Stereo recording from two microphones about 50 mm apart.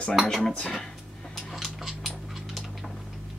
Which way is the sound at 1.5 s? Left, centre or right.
Centre.